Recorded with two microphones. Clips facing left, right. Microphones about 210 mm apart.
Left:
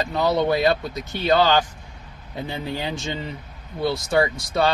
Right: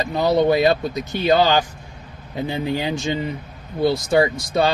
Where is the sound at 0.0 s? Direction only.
15° right (ahead or behind).